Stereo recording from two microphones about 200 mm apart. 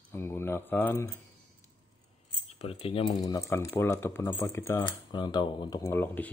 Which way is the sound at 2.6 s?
30° left (ahead or behind).